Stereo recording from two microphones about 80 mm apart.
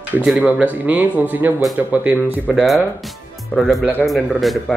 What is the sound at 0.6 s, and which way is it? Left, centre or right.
A man's voice, right.